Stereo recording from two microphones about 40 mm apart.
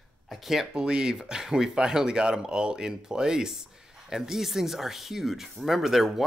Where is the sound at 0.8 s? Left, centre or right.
Right.